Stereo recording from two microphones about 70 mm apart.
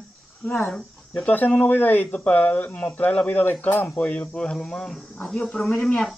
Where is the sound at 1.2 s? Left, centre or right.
Left; by 5.9 s centre.